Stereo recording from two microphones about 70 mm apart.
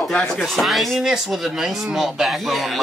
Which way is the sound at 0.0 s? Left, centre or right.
Centre.